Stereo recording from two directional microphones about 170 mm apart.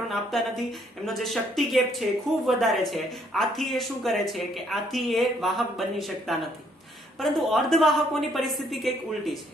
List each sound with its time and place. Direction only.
1.0 s speech: centre (ahead or behind)